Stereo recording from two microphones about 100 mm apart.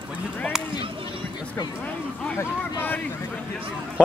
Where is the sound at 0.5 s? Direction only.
5° right (ahead or behind).